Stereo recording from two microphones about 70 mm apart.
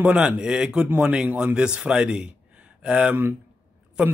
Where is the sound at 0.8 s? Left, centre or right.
Right.